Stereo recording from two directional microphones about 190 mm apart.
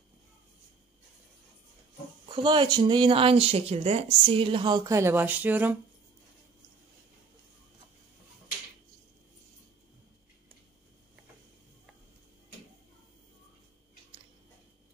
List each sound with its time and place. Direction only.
2.2 s speech: 25° right (ahead or behind); by 5.8 s 10° right (ahead or behind)